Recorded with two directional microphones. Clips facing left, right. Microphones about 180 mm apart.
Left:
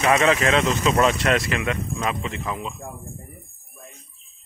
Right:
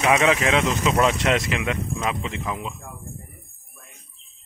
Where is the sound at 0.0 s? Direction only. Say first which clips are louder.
Left 1 dB; 10° right (ahead or behind).